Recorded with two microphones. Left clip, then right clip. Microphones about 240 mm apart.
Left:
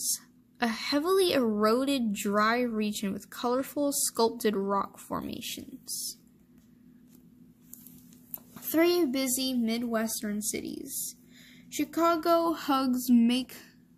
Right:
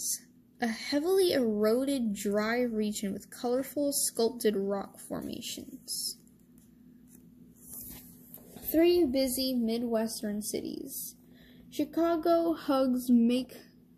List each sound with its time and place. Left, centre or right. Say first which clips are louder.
0.1 s a woman's voice: left 3 dB; left
8.7 s a woman's voice: even; left